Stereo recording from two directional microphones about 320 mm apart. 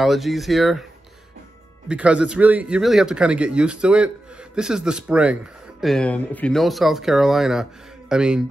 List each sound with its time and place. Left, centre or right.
0.0 s speech: centre
1.9 s speech: centre